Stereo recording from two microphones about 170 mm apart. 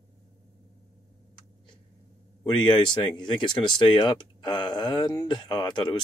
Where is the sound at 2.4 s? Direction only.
25° left (ahead or behind).